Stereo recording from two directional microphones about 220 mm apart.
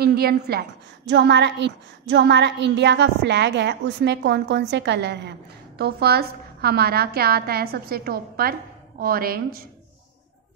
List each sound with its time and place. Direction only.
0.0 s a woman's voice: 45° right (ahead or behind)